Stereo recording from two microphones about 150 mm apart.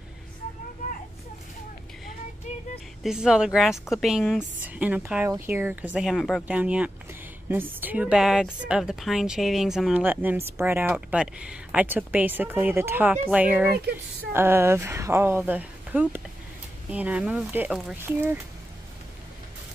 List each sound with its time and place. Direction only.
3.0 s a woman's voice: 5° right (ahead or behind)
18.0 s a woman's voice: 15° right (ahead or behind)